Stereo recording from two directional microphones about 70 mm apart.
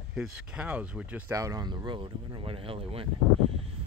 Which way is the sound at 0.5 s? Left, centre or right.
Centre.